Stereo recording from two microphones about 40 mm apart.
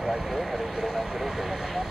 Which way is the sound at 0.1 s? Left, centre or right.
Centre.